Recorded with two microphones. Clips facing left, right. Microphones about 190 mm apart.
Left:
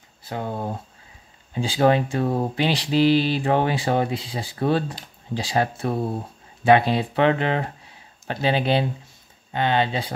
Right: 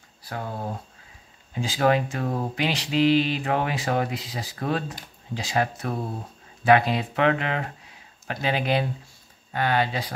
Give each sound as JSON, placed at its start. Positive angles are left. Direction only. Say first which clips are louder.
{"t": 0.2, "sound": "speech", "louder": "left 4 dB", "side_deg": 20}